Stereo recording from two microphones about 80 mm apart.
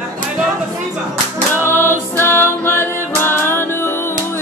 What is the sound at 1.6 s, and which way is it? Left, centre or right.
Music, left.